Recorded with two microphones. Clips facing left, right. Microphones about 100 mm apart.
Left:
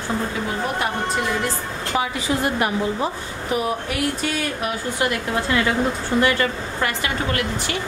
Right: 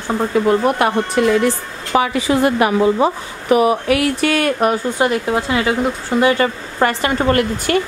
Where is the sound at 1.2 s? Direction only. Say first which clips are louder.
Right 9 dB; 90° right; by 4.7 s 65° right (ahead or behind).